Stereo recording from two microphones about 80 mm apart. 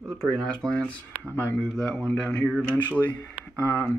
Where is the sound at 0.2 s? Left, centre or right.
Centre.